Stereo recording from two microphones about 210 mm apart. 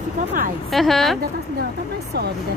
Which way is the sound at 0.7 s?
Centre (ahead or behind).